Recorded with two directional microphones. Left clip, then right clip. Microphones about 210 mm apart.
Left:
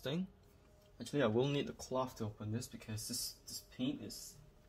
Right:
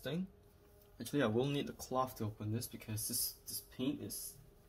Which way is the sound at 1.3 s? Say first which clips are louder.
Left 1 dB; 20° left (ahead or behind).